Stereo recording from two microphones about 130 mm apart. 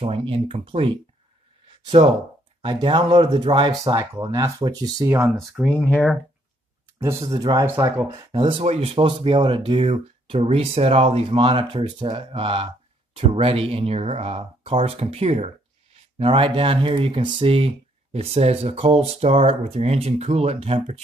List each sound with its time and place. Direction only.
0.0 s speech: 45° right (ahead or behind)
2.0 s speech: 55° right (ahead or behind)
2.6 s speech: 35° right (ahead or behind)
5.2 s speech: 5° right (ahead or behind)
5.7 s speech: 10° left (ahead or behind)
7.0 s speech: 20° right (ahead or behind)
7.3 s speech: 35° right (ahead or behind)
8.6 s speech: 50° right (ahead or behind)
9.0 s speech: 40° right (ahead or behind)